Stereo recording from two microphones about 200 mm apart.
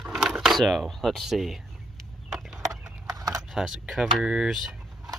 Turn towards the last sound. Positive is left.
turn(degrees=0)  # may be behind; listen again after turning